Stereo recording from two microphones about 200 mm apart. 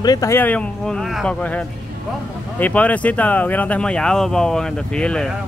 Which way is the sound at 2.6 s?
5° left (ahead or behind).